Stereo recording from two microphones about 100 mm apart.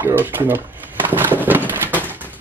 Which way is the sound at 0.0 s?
20° right (ahead or behind).